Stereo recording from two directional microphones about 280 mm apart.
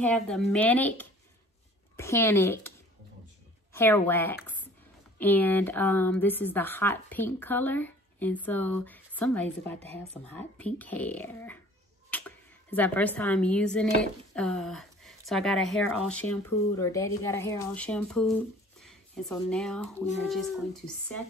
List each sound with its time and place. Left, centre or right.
0.0 s a woman's voice: centre
3.7 s a woman's voice: centre
4.4 s a sound: centre
5.2 s a woman's voice: centre